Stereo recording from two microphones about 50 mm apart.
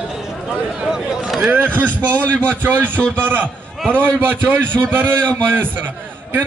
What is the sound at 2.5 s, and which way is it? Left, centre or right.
A man's voice, right.